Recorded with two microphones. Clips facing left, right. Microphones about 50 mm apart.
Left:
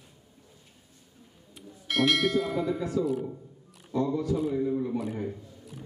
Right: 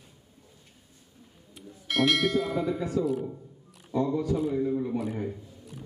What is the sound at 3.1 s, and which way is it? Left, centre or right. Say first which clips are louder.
Speech: even; centre.